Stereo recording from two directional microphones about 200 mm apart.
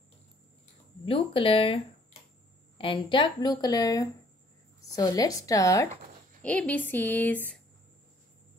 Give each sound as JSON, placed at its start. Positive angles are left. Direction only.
{"t": 1.0, "sound": "speech", "side_deg": 25}
{"t": 2.8, "sound": "speech", "side_deg": 25}